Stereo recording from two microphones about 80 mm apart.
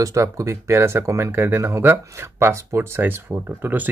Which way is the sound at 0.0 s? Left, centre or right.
Right.